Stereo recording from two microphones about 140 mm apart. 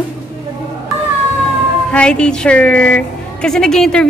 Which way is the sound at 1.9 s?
5° left (ahead or behind).